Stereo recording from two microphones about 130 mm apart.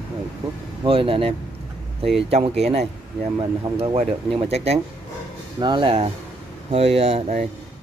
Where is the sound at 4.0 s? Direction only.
45° right (ahead or behind).